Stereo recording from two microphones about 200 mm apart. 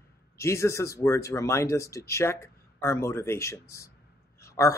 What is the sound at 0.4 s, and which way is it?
Speech, 15° left (ahead or behind).